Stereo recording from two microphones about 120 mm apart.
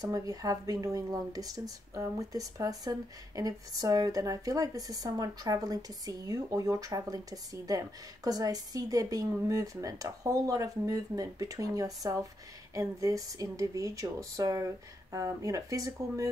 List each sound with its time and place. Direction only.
0.0 s speech: 30° right (ahead or behind)